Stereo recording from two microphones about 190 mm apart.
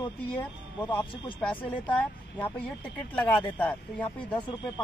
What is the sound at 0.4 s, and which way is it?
Speech, 25° left (ahead or behind).